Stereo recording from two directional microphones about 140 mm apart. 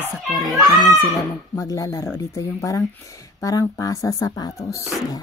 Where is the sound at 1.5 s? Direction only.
25° left (ahead or behind).